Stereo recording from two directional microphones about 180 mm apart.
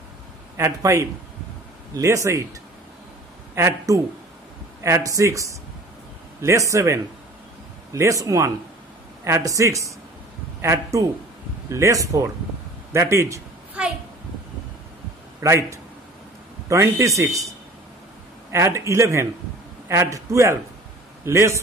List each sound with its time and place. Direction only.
0.6 s a man's voice: 15° right (ahead or behind)
3.5 s a man's voice: 15° right (ahead or behind)
9.2 s a man's voice: 15° right (ahead or behind)
12.9 s a sound: 15° right (ahead or behind)
15.4 s a man's voice: 15° right (ahead or behind)